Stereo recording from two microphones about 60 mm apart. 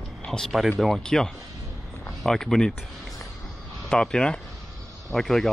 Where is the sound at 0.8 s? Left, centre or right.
Centre.